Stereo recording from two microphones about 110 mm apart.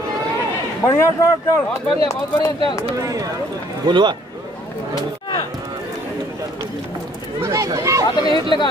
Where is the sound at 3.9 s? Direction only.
45° right (ahead or behind).